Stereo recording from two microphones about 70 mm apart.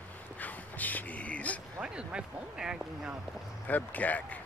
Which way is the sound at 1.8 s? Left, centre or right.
Centre.